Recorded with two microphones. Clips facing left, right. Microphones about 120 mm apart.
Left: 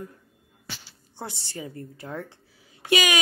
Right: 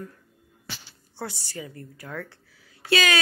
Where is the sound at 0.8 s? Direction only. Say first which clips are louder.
Right 3 dB; 20° left (ahead or behind).